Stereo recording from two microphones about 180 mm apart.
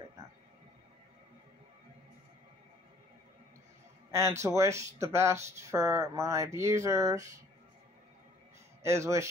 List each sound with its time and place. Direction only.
4.1 s speech: 15° right (ahead or behind)
8.8 s speech: 15° right (ahead or behind)